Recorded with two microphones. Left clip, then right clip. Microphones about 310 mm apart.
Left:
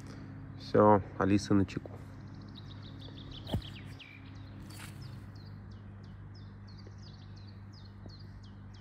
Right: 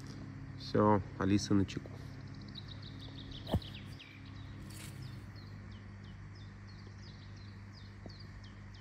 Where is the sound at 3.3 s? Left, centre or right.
Right.